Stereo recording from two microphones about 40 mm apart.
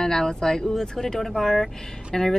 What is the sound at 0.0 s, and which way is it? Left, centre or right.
A woman's voice, centre.